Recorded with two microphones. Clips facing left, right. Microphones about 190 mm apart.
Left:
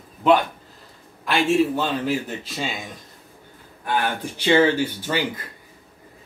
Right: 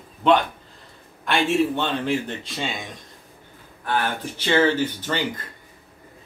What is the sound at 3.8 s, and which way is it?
Speech, 15° left (ahead or behind).